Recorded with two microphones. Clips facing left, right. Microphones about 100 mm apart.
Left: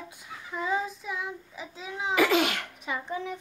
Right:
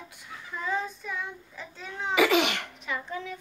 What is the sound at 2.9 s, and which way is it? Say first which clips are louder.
Dishes: left 2 dB; 15° left (ahead or behind).